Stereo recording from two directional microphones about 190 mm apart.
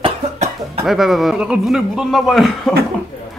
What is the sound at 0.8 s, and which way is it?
Speech, centre (ahead or behind).